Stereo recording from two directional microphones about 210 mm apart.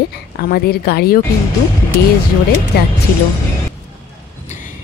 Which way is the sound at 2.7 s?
50° left (ahead or behind).